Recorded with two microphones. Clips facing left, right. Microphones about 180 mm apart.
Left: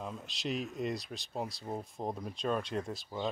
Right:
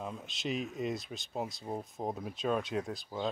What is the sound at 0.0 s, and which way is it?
Speech, centre (ahead or behind).